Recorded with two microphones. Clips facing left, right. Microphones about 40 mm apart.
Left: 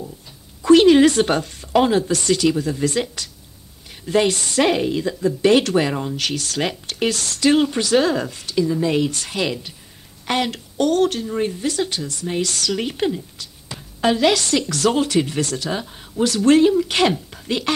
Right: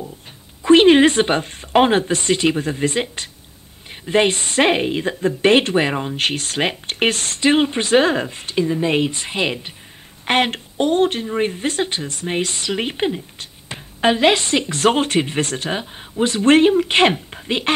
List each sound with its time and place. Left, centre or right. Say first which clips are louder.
0.6 s speech: right 1 dB; right
10.8 s speech: right 1 dB; right